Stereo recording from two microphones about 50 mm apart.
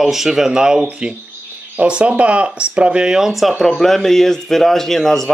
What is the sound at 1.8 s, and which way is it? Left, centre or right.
A man's voice, right.